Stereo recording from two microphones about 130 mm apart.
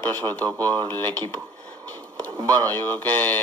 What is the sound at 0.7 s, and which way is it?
Speech, 35° right (ahead or behind).